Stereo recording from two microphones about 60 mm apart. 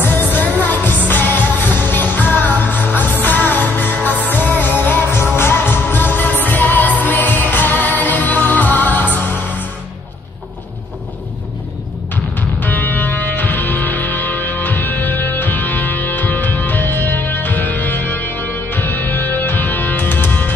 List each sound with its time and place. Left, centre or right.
0.0 s music: left
5.1 s music: left
12.4 s music: left